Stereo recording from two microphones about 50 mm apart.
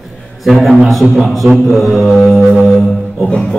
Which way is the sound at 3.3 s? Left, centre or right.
Centre.